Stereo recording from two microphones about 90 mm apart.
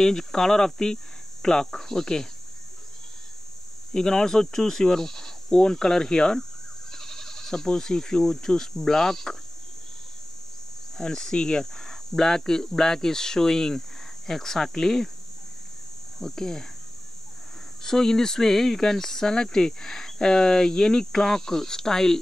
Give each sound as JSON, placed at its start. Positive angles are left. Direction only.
{"t": 0.0, "sound": "speech", "side_deg": 5}
{"t": 3.9, "sound": "speech", "side_deg": 5}
{"t": 11.0, "sound": "speech", "side_deg": 5}
{"t": 16.2, "sound": "speech", "side_deg": 5}
{"t": 17.8, "sound": "speech", "side_deg": 5}